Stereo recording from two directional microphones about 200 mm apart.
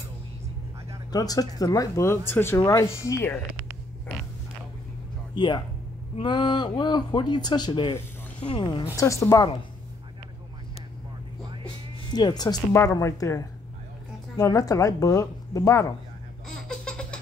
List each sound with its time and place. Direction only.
1.1 s speech: 20° left (ahead or behind)
5.3 s speech: 20° left (ahead or behind)
12.1 s speech: 20° left (ahead or behind)
16.4 s baby laughter: 5° left (ahead or behind)